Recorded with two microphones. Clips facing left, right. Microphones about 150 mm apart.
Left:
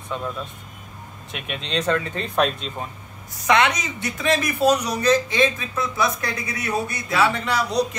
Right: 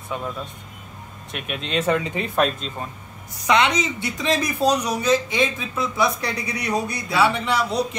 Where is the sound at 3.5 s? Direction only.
15° right (ahead or behind).